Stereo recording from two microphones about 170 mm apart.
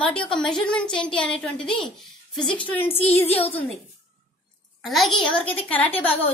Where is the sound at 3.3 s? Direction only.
35° left (ahead or behind).